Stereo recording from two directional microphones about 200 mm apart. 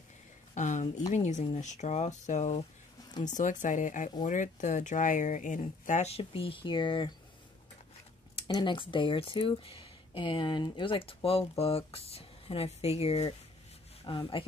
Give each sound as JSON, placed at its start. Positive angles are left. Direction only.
{"t": 0.6, "sound": "speech", "side_deg": 40}
{"t": 8.4, "sound": "speech", "side_deg": 25}